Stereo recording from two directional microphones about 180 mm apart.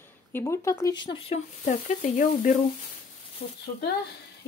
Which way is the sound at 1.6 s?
40° left (ahead or behind).